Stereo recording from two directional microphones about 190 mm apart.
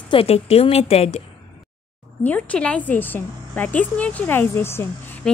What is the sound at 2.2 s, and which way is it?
A woman's voice, 5° left (ahead or behind).